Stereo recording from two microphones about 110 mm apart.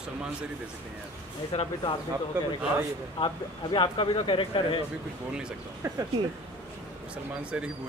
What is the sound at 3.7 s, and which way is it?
Speech, 50° left (ahead or behind).